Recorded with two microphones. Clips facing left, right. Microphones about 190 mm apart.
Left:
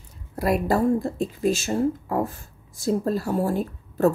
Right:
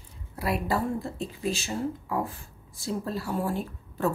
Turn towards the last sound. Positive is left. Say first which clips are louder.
# left 7 dB
turn(degrees=40)  # may be behind; listen again after turning